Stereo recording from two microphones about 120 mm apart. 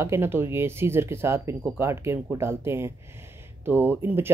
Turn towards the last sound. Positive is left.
turn(degrees=-20)  # may be behind; listen again after turning